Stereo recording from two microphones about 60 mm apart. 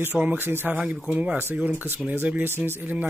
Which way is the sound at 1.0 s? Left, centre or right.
Right.